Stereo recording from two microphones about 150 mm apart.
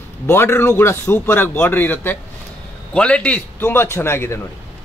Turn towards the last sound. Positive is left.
turn(degrees=15)  # may be behind; listen again after turning